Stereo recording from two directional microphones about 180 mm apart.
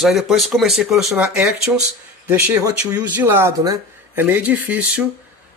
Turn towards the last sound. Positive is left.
turn(degrees=-5)  # may be behind; listen again after turning